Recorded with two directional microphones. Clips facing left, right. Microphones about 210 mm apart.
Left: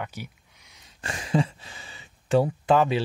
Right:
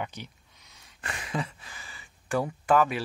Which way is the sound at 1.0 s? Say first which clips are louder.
Left 8 dB; 30° left (ahead or behind).